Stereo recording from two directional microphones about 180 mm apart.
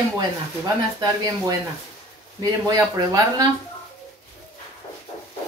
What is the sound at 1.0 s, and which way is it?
Speech, 20° right (ahead or behind).